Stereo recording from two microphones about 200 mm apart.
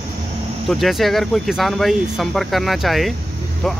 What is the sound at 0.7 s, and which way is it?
Speech, centre (ahead or behind).